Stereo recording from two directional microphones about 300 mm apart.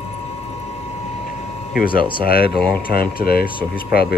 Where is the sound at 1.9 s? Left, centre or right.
Centre.